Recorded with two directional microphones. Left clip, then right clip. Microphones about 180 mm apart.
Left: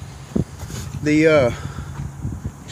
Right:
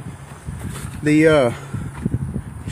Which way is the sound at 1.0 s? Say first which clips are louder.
Right 1 dB; 20° right (ahead or behind).